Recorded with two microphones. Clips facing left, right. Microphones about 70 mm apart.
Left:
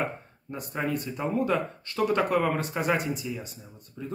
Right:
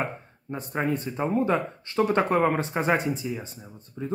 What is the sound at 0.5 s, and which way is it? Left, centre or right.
Speech, right.